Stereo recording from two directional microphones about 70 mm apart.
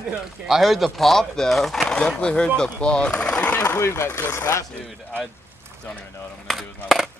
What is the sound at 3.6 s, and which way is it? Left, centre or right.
Speech, left.